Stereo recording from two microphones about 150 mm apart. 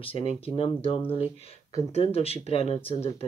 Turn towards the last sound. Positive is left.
turn(degrees=40)  # may be behind; listen again after turning